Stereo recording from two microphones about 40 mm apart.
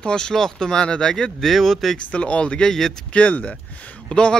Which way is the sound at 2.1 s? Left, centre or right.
Left.